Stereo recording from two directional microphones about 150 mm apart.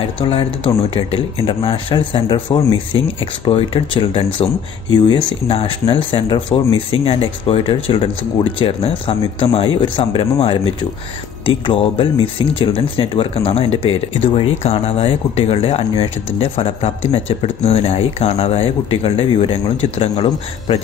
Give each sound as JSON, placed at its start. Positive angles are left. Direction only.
{"t": 1.1, "sound": "speech", "side_deg": 35}